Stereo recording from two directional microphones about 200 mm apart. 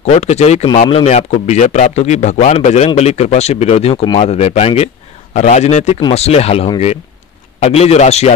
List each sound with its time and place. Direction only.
0.0 s a man's voice: 30° left (ahead or behind)